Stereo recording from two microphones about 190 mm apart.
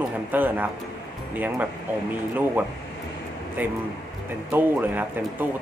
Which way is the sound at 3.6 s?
10° right (ahead or behind).